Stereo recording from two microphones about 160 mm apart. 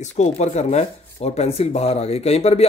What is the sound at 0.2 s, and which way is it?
Speech, 45° left (ahead or behind).